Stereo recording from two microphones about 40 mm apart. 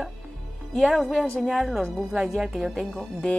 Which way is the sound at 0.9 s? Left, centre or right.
Centre.